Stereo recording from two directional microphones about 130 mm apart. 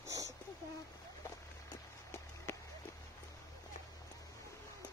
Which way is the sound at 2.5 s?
15° left (ahead or behind).